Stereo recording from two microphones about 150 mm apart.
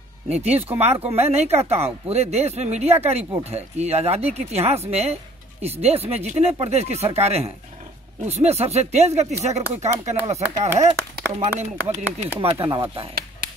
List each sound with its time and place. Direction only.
0.3 s speech: 45° right (ahead or behind)
12.5 s speech: 35° right (ahead or behind)